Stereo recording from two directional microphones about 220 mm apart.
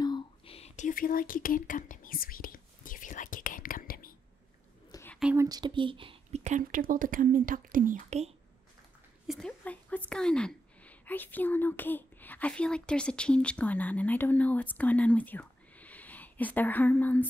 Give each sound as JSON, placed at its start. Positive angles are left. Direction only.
{"t": 0.0, "sound": "whispering", "side_deg": 25}
{"t": 4.9, "sound": "whispering", "side_deg": 10}
{"t": 5.2, "sound": "speech", "side_deg": -10}
{"t": 9.3, "sound": "a woman's voice", "side_deg": 5}